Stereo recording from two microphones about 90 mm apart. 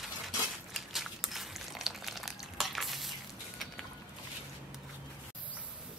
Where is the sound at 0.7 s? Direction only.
Centre (ahead or behind).